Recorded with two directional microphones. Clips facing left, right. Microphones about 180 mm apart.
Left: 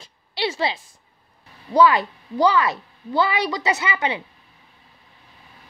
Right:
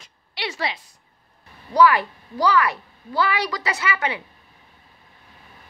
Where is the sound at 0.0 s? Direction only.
30° left (ahead or behind).